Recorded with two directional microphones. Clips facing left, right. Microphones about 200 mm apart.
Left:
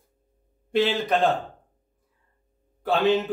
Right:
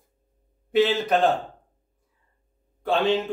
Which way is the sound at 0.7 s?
Centre (ahead or behind).